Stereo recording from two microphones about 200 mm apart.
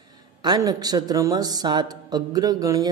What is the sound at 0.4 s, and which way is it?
A man's voice, 20° right (ahead or behind).